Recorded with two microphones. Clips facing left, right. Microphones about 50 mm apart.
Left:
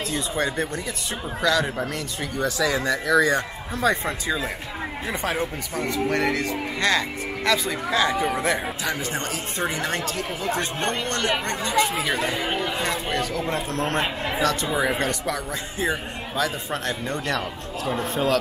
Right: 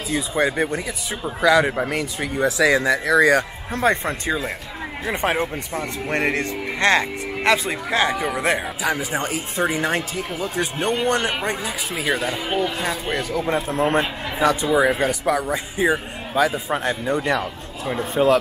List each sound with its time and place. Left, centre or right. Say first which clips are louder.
0.3 s speech: right 6 dB; centre
3.3 s speech: right 4 dB; right
8.1 s a man's voice: right 1 dB; centre